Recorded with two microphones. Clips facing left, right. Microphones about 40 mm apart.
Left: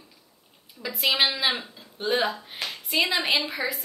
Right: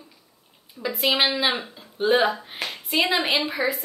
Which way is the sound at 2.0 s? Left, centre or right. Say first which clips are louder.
Right 5 dB; right.